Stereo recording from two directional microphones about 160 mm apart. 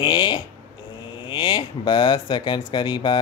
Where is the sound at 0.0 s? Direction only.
25° left (ahead or behind).